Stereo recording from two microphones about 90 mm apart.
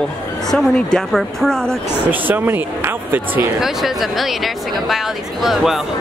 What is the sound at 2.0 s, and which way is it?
Speech, 20° right (ahead or behind).